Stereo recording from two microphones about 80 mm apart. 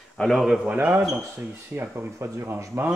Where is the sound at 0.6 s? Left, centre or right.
Right.